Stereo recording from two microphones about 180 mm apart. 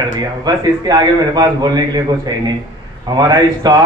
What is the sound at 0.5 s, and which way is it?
Speech, 20° right (ahead or behind).